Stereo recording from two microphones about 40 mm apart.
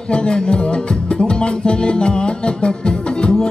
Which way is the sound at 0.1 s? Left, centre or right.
Left.